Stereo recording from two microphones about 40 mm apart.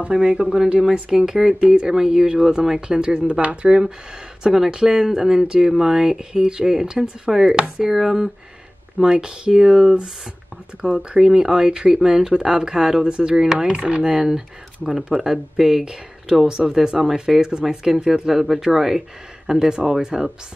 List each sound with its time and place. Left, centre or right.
0.0 s speech: right
0.9 s speech: right
1.2 s speech: centre
3.2 s speech: right; by 13.0 s centre
13.0 s speech: right
13.4 s speech: centre
13.7 s speech: right
14.0 s speech: centre